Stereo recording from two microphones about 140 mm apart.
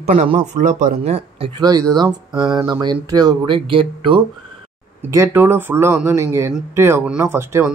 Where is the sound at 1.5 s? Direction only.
25° right (ahead or behind).